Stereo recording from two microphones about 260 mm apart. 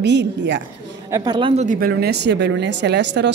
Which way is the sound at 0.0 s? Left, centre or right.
Right.